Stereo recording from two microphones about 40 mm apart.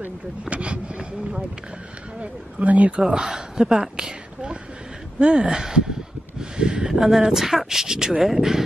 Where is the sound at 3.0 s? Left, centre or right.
Centre.